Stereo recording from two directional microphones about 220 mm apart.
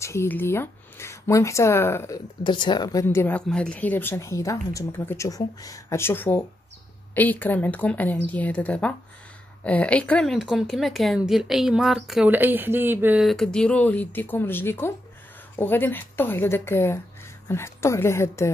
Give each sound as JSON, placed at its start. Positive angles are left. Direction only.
{"t": 0.0, "sound": "speech", "side_deg": 10}